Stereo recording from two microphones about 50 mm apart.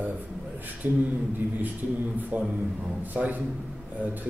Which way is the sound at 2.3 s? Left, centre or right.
Right.